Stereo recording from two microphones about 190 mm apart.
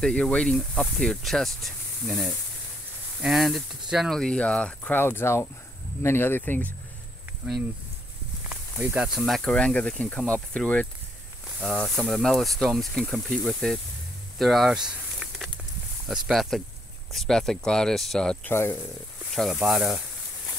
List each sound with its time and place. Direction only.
0.0 s speech: 5° left (ahead or behind)
8.5 s speech: 5° right (ahead or behind)
14.4 s a sound: centre (ahead or behind)
16.1 s speech: centre (ahead or behind)
19.3 s speech: centre (ahead or behind)